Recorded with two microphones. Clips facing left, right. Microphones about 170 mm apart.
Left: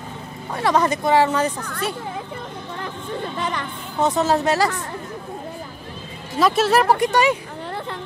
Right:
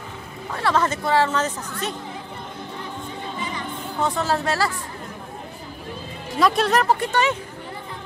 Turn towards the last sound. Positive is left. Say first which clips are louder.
# left 3 dB
turn(degrees=10)  # may be behind; listen again after turning